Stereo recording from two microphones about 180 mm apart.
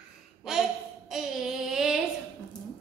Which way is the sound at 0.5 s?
5° right (ahead or behind).